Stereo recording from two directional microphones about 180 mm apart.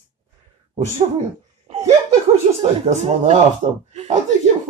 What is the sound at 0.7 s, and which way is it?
Speech, 40° right (ahead or behind).